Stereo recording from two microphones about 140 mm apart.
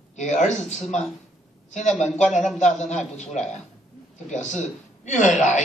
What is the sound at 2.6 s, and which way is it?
A woman's voice, 55° left (ahead or behind).